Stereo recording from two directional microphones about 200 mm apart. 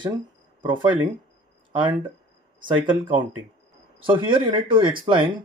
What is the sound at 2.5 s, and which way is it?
Speech, 25° right (ahead or behind).